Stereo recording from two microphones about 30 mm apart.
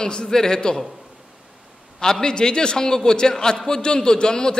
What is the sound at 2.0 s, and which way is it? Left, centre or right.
A man's voice, left.